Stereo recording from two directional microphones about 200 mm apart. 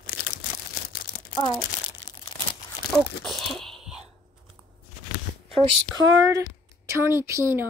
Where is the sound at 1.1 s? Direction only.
45° left (ahead or behind).